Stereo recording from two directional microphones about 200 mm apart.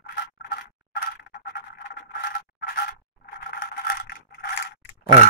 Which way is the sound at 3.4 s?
50° left (ahead or behind).